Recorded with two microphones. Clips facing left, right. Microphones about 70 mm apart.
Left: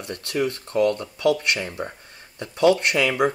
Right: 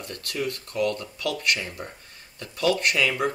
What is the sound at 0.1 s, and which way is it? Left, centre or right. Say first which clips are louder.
Speech: left 6 dB; left.